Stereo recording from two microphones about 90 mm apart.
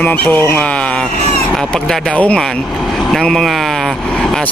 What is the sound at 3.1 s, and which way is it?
Speech, 5° left (ahead or behind).